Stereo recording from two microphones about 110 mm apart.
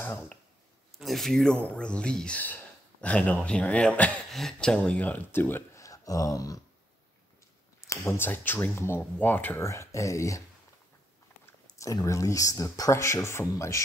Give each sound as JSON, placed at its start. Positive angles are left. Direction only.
{"t": 0.0, "sound": "speech", "side_deg": 15}
{"t": 0.9, "sound": "speech", "side_deg": 0}
{"t": 5.9, "sound": "speech", "side_deg": 30}
{"t": 7.8, "sound": "speech", "side_deg": 25}
{"t": 11.6, "sound": "speech", "side_deg": 30}